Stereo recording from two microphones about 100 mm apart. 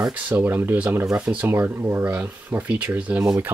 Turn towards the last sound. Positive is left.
turn(degrees=-15)  # may be behind; listen again after turning